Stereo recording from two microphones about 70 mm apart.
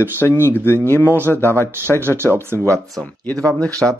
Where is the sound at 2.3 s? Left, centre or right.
Right.